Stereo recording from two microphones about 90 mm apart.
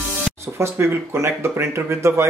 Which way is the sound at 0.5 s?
30° right (ahead or behind).